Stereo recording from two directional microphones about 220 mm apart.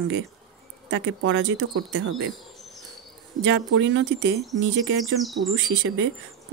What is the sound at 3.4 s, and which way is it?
Speech, 60° right (ahead or behind).